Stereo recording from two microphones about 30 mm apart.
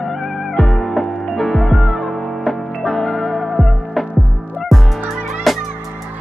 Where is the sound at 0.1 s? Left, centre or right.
Centre.